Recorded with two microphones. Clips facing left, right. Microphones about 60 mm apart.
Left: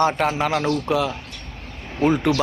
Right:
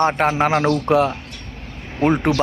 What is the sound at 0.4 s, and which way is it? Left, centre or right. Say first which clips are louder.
Speech: right 4 dB; right.